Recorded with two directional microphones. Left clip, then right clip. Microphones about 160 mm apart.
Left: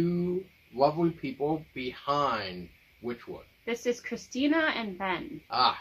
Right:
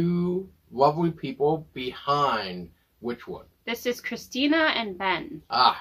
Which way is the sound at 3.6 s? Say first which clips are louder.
Right 2 dB; 25° left (ahead or behind).